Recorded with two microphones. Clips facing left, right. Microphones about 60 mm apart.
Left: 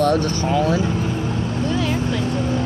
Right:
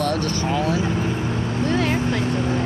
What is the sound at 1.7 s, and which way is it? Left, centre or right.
Vehicle, right.